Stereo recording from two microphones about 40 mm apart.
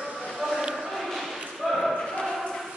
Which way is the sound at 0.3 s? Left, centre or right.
Centre.